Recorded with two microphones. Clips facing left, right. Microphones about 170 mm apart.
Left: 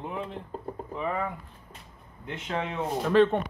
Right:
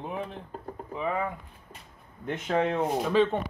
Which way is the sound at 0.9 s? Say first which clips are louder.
Right 1 dB; 5° right (ahead or behind).